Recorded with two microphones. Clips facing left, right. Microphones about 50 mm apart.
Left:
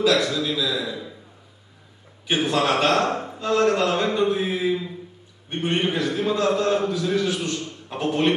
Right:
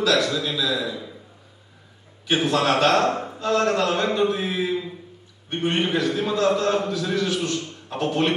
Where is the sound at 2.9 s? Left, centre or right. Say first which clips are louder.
Right 1 dB; centre.